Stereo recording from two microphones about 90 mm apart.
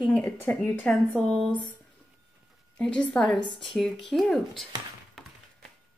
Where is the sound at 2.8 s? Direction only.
10° left (ahead or behind).